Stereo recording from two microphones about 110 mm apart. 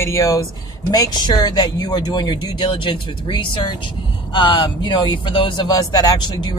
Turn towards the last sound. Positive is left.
turn(degrees=40)  # may be behind; listen again after turning